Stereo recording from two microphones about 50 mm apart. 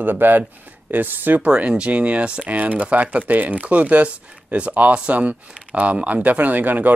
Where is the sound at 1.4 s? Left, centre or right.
Right.